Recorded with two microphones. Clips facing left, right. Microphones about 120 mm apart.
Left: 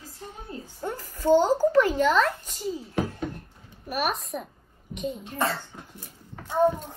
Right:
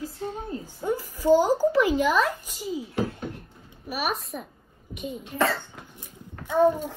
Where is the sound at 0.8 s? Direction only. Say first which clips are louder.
Right 2 dB; 10° right (ahead or behind).